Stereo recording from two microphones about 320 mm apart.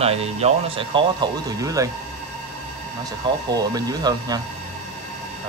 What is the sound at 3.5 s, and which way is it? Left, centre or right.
Speech, centre.